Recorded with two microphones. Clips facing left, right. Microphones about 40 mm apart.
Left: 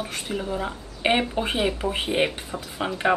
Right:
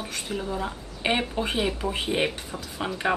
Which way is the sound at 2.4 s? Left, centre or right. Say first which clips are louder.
Left 3 dB; left.